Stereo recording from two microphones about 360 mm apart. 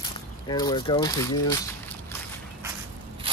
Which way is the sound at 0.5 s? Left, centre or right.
Centre.